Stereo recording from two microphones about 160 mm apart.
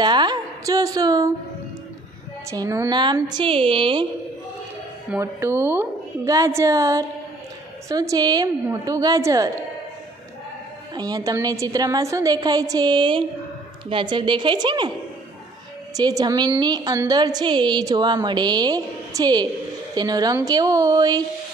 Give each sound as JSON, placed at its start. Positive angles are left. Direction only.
{"t": 0.0, "sound": "a woman's voice", "side_deg": -25}
{"t": 2.5, "sound": "a woman's voice", "side_deg": -20}
{"t": 5.1, "sound": "a woman's voice", "side_deg": -15}
{"t": 11.0, "sound": "a woman's voice", "side_deg": -25}
{"t": 15.9, "sound": "a woman's voice", "side_deg": -25}